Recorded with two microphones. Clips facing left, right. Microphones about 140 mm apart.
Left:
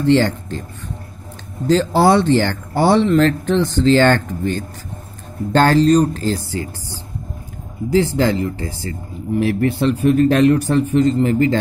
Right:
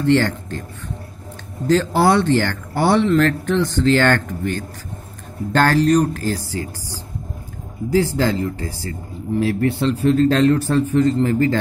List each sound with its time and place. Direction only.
0.0 s speech: 20° left (ahead or behind)
1.7 s a man's voice: 20° left (ahead or behind)